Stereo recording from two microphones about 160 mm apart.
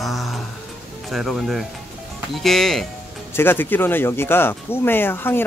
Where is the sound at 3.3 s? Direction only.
15° left (ahead or behind).